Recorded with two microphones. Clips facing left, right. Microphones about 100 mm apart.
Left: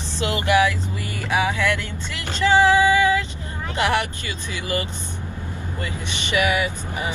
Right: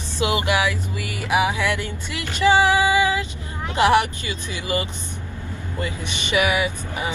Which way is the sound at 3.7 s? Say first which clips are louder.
Right 5 dB; 20° right (ahead or behind).